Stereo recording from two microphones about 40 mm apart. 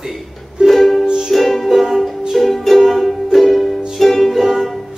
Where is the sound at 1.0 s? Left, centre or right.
Centre.